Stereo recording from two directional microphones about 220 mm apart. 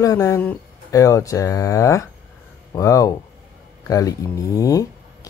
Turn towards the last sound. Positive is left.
turn(degrees=15)  # may be behind; listen again after turning